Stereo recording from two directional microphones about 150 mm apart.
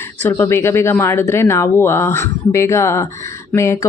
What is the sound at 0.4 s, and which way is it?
Speech, 15° left (ahead or behind).